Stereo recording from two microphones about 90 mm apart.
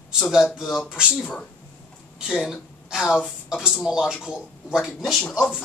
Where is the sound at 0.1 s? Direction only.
5° right (ahead or behind).